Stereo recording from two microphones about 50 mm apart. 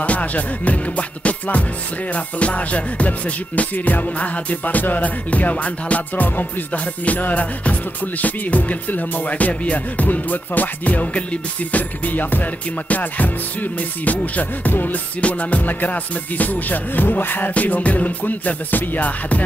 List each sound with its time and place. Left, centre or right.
0.0 s music: left
17.6 s music: left